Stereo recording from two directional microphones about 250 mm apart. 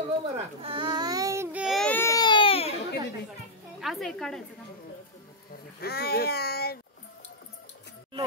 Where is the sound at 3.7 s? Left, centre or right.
Centre.